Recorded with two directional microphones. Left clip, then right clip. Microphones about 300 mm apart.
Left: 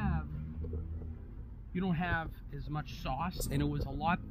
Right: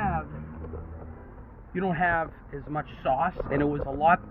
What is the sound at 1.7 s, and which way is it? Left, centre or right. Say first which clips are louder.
Speech: right 11 dB; centre.